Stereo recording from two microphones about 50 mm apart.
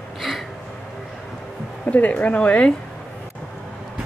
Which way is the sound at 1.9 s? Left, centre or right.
Left.